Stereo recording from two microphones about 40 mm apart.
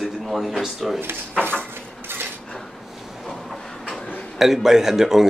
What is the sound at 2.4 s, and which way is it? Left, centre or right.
Dishes, centre.